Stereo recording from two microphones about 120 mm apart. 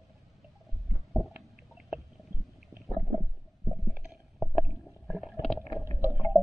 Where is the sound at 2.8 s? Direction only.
Centre (ahead or behind).